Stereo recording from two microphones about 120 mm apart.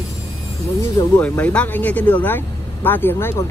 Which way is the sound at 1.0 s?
35° left (ahead or behind).